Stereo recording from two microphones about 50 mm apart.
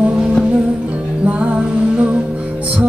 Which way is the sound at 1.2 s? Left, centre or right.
Right.